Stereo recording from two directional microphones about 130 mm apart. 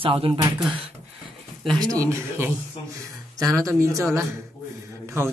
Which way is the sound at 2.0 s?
20° right (ahead or behind).